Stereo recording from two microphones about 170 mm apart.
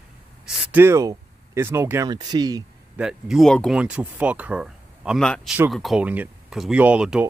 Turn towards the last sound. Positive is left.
turn(degrees=-5)  # may be behind; listen again after turning